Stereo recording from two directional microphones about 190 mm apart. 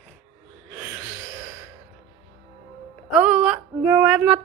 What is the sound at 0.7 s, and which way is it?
Gasp, 10° right (ahead or behind).